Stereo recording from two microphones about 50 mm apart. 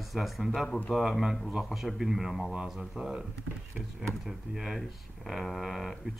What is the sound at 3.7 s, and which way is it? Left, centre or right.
Speech, centre.